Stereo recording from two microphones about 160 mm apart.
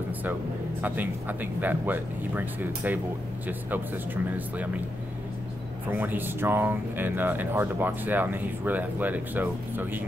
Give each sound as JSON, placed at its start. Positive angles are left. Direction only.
{"t": 0.2, "sound": "speech", "side_deg": -10}
{"t": 5.9, "sound": "speech", "side_deg": -10}